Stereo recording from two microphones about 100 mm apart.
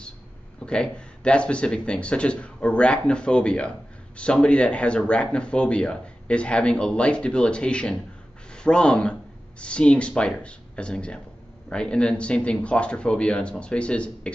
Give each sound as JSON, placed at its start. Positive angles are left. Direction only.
{"t": 0.6, "sound": "speech", "side_deg": 10}